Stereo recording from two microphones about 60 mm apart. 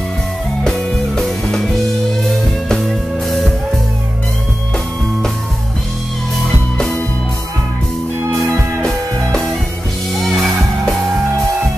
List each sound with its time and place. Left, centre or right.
0.7 s music: centre
8.3 s music: right
8.8 s music: centre